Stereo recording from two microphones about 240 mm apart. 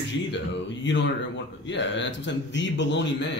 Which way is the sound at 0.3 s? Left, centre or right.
Left.